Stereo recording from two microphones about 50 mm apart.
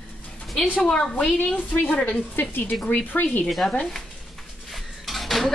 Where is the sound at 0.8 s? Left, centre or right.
Centre.